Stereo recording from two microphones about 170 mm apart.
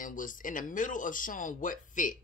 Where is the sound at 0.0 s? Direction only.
50° left (ahead or behind).